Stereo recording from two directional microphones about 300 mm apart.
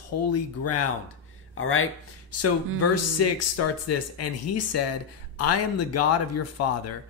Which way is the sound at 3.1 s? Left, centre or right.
Left.